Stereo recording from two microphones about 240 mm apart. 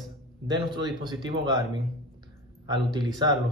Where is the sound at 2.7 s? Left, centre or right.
Centre.